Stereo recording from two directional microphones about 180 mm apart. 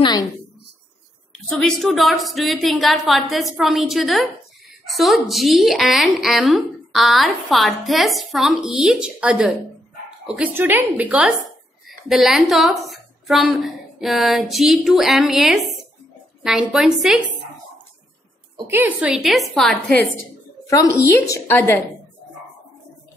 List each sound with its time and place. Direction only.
0.0 s a woman's voice: 20° left (ahead or behind)
1.6 s a woman's voice: centre (ahead or behind)
18.7 s a woman's voice: 10° right (ahead or behind)
20.7 s a woman's voice: 20° left (ahead or behind)